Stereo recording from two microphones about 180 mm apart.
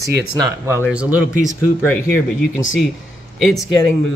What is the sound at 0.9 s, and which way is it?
Speech, 5° right (ahead or behind).